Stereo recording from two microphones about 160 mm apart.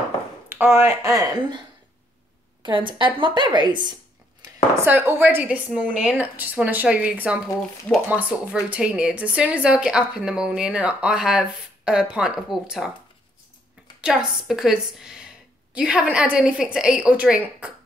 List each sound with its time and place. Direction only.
0.7 s a woman's voice: 20° right (ahead or behind)
2.6 s a woman's voice: 30° right (ahead or behind)
4.8 s a woman's voice: 15° right (ahead or behind)
14.0 s a woman's voice: 5° right (ahead or behind)